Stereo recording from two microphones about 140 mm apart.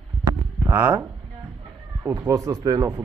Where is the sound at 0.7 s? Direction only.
10° right (ahead or behind).